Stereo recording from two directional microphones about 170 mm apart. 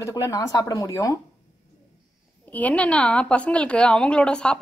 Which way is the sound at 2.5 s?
10° left (ahead or behind).